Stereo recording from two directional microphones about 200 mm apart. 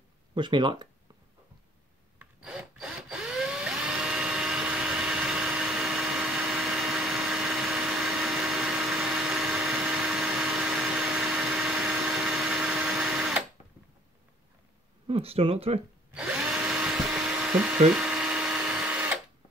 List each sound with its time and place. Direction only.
0.3 s speech: 25° right (ahead or behind)
2.1 s tools: 5° right (ahead or behind)
15.0 s speech: 30° right (ahead or behind)
16.2 s drill: 5° right (ahead or behind)
17.9 s a sound: 5° right (ahead or behind)